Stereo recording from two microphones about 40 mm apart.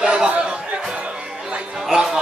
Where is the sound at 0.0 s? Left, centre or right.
Right.